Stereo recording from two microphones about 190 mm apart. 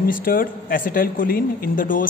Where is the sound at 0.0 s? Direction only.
50° left (ahead or behind).